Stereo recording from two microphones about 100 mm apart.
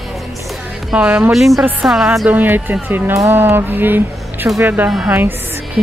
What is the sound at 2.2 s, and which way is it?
Speech, 20° right (ahead or behind).